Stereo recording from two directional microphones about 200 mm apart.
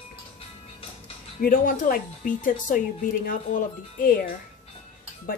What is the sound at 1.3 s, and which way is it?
Speech, 45° left (ahead or behind).